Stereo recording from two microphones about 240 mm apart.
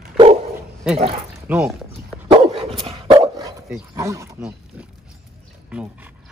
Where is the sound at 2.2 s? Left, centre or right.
Right.